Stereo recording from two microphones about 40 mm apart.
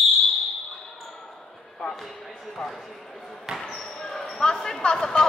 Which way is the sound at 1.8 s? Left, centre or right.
Left.